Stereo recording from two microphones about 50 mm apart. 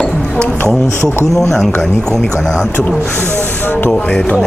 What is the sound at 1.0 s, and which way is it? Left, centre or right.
Speech, left.